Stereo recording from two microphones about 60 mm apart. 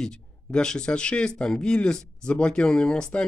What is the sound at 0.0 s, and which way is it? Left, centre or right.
Speech, centre.